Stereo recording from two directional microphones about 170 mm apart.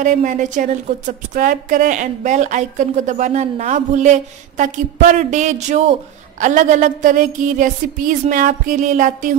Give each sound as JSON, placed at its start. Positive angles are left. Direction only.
{"t": 0.0, "sound": "a woman's voice", "side_deg": -45}